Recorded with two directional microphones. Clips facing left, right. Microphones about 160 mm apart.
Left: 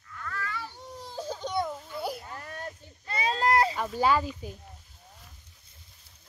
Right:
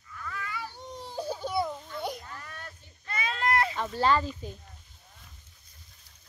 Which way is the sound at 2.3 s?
40° left (ahead or behind).